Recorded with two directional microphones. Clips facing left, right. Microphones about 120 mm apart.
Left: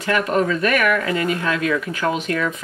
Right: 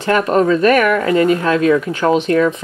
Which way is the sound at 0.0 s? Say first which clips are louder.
Right 5 dB; 35° right (ahead or behind).